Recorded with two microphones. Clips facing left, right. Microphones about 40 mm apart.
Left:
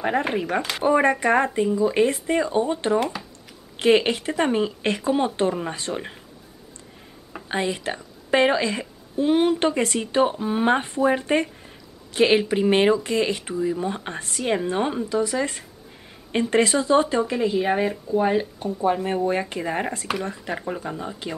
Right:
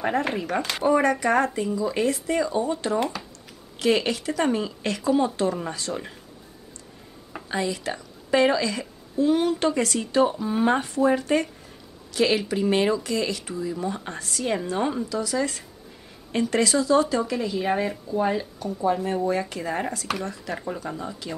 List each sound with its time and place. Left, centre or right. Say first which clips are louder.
0.0 s speech: left 2 dB; centre
0.8 s speech: left 2 dB; left
7.4 s speech: left 2 dB; left
18.4 s speech: left 2 dB; left